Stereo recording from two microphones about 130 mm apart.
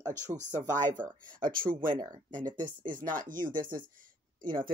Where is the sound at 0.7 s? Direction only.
80° right.